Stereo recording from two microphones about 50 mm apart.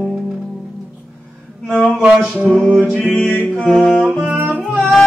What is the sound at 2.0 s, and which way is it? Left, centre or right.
Music, centre.